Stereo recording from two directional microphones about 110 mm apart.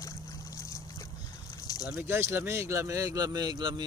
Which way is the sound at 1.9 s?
20° right (ahead or behind).